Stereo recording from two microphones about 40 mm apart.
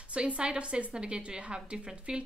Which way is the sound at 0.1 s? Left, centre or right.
Right.